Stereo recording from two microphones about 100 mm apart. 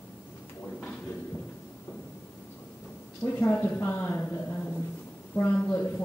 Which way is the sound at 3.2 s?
20° left (ahead or behind).